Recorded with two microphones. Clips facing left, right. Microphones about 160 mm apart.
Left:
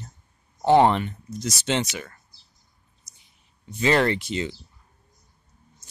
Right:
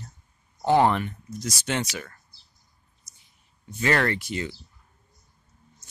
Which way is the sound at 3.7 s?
20° left (ahead or behind).